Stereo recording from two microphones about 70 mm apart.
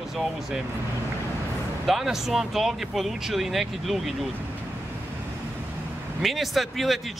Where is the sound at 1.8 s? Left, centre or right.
Centre.